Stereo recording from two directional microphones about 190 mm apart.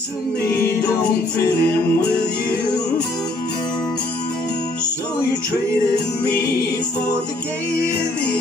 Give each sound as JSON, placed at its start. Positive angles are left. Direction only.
{"t": 0.6, "sound": "music", "side_deg": 55}